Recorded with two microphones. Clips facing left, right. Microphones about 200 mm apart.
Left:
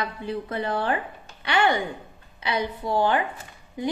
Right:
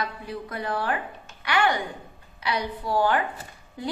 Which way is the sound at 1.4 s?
25° left (ahead or behind).